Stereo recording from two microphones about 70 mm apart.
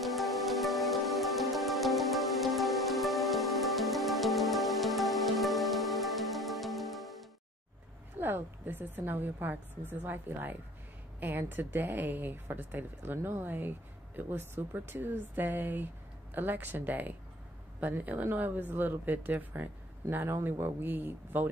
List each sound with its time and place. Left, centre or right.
0.0 s music: centre
8.2 s a woman's voice: right